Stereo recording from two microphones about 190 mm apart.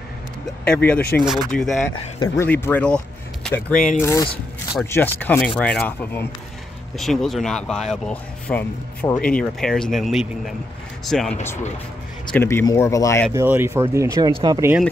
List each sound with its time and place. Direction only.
0.7 s speech: 10° left (ahead or behind)
4.0 s speech: 15° left (ahead or behind)
13.3 s speech: 15° right (ahead or behind)